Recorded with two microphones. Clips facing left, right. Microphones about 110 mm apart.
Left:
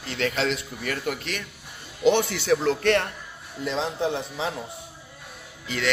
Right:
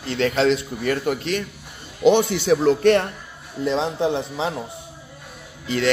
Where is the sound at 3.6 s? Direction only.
30° right (ahead or behind).